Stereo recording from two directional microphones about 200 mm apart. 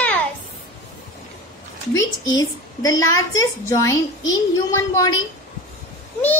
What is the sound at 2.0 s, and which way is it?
A woman's voice, 15° left (ahead or behind).